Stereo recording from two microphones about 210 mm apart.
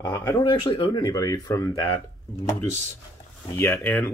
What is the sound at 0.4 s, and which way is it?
Speech, 20° left (ahead or behind).